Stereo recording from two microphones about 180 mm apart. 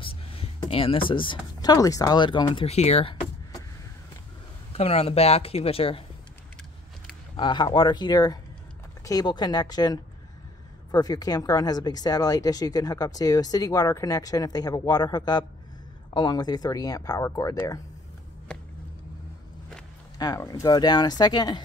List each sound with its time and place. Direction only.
0.0 s speech: 30° left (ahead or behind)
4.7 s speech: 35° left (ahead or behind)
7.3 s speech: 25° left (ahead or behind)
20.2 s speech: 20° left (ahead or behind)